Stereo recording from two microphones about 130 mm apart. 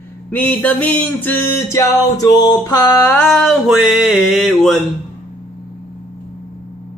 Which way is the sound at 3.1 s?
5° left (ahead or behind).